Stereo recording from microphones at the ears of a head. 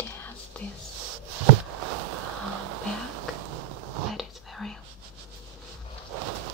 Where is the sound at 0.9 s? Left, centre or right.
Right.